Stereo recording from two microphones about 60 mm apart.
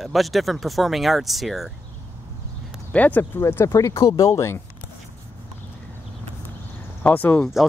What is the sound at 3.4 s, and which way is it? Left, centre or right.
Speech, left.